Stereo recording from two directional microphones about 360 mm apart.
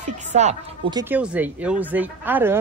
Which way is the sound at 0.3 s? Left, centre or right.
Centre.